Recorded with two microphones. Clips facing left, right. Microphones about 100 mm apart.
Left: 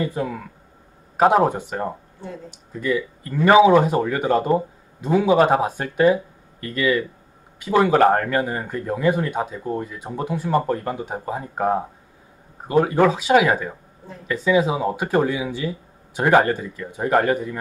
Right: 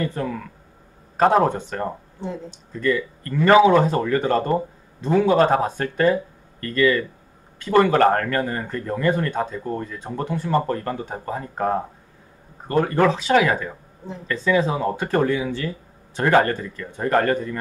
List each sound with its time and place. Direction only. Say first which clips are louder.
0.0 s speech: left 1 dB; 10° left (ahead or behind)
2.1 s speech: right 4 dB; 20° right (ahead or behind)
2.7 s speech: right 1 dB; 10° left (ahead or behind)